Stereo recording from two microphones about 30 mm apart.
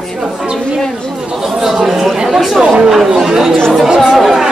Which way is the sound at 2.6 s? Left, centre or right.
Right.